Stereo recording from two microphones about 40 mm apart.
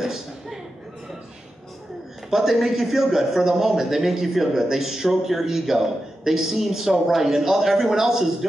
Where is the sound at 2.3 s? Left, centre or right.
Centre.